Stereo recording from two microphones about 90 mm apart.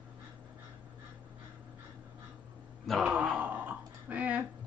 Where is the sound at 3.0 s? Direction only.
10° right (ahead or behind).